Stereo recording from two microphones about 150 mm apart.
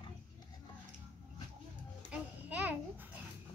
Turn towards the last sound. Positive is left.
turn(degrees=-10)  # may be behind; listen again after turning